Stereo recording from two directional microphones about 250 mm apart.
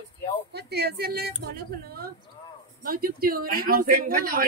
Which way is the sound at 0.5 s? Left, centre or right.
Right.